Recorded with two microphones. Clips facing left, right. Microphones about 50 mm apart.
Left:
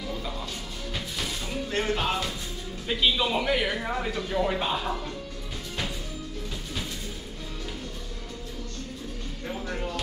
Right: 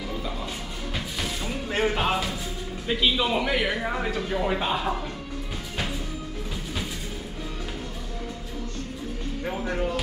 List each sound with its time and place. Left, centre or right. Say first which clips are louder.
0.9 s music: right 2 dB; centre
2.9 s speech: right 1 dB; centre
9.4 s music: right 5 dB; right